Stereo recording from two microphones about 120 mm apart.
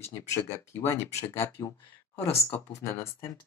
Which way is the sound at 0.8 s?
25° left (ahead or behind).